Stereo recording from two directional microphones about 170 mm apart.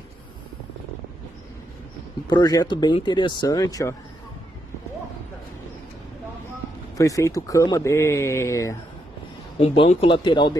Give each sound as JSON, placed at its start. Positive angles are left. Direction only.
{"t": 2.2, "sound": "speech", "side_deg": 20}
{"t": 7.0, "sound": "speech", "side_deg": 20}
{"t": 9.6, "sound": "speech", "side_deg": 35}